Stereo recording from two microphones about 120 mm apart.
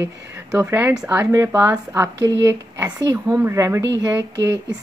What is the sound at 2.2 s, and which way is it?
A woman's voice, 30° right (ahead or behind).